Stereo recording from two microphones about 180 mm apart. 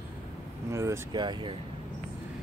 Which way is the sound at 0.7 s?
15° right (ahead or behind).